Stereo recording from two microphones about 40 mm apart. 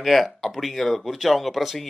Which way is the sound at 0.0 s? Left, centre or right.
Centre.